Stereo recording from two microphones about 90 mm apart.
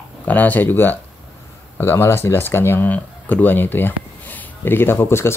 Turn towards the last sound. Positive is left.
turn(degrees=25)  # may be behind; listen again after turning